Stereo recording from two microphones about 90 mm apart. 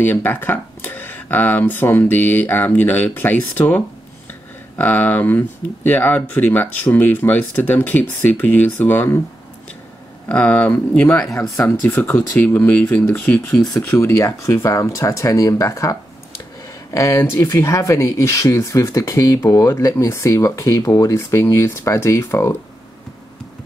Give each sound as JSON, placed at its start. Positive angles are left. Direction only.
{"t": 0.0, "sound": "speech", "side_deg": 25}
{"t": 10.2, "sound": "speech", "side_deg": 15}
{"t": 11.5, "sound": "speech", "side_deg": 30}